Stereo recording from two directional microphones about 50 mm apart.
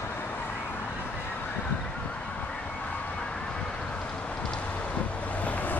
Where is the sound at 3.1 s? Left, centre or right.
Centre.